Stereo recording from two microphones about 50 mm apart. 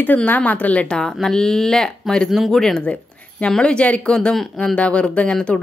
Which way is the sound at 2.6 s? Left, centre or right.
Centre.